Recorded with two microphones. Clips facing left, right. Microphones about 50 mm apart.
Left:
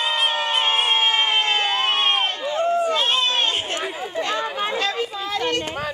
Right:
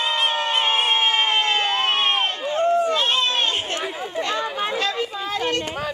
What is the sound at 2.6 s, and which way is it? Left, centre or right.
Run, centre.